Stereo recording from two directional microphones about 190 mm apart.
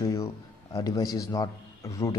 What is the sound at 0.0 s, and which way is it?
A man's voice, 15° left (ahead or behind).